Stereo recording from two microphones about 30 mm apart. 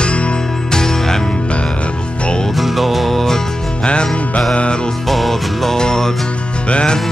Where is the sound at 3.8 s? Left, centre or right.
Left.